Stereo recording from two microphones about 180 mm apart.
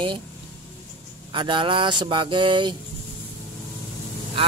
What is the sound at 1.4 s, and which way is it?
Speech, 25° right (ahead or behind).